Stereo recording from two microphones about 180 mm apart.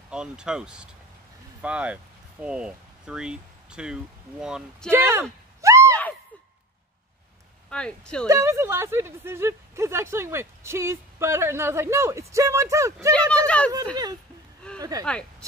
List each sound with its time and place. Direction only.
0.1 s speech: 5° right (ahead or behind)
5.6 s a sound: 15° right (ahead or behind)
7.7 s speech: 5° left (ahead or behind)
8.3 s speech: 15° right (ahead or behind)
13.1 s speech: 5° left (ahead or behind)
14.8 s speech: 20° right (ahead or behind)